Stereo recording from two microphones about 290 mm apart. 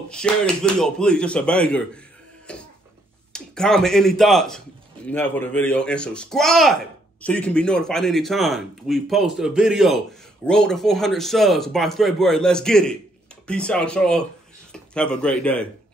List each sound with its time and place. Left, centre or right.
0.1 s speech: centre